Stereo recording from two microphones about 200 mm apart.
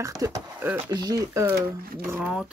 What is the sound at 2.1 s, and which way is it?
Speech, 5° right (ahead or behind).